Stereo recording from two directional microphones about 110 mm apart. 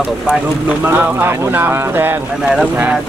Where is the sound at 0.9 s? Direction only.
15° right (ahead or behind).